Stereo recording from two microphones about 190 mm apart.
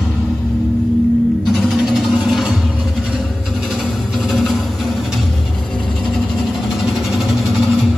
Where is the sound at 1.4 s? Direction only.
Centre (ahead or behind).